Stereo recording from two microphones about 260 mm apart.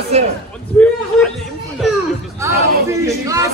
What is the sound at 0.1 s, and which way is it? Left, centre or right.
Speech, right.